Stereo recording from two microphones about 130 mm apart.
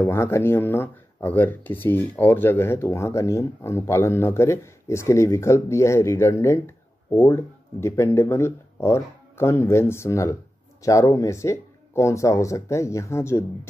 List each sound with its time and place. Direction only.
0.0 s speech: 20° left (ahead or behind)